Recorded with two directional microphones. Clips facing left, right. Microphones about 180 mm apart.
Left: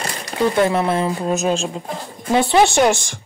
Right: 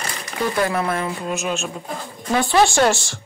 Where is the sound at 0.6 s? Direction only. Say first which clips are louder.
Left 3 dB; 25° left (ahead or behind).